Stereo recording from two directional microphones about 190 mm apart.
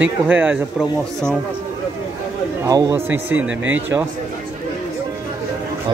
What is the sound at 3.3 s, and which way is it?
Speech, 90° right.